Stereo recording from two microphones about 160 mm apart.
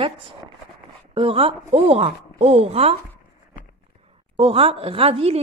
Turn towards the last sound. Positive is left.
turn(degrees=-35)  # may be behind; listen again after turning